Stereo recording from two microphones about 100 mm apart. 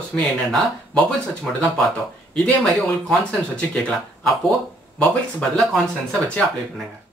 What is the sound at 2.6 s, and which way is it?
Speech, 5° left (ahead or behind).